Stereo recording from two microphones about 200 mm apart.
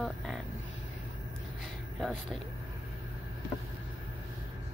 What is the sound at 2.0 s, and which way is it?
Speech, centre (ahead or behind).